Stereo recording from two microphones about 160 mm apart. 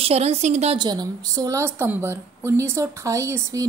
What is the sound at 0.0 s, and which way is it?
Speech, 40° right (ahead or behind).